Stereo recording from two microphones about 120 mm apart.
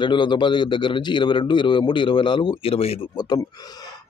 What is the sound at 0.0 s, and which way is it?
A man's voice, 40° left (ahead or behind).